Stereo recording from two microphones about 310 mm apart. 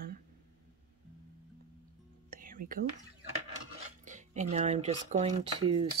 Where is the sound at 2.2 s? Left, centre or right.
Right.